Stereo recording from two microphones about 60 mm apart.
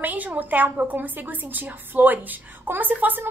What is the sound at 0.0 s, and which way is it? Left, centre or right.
A woman's voice, right.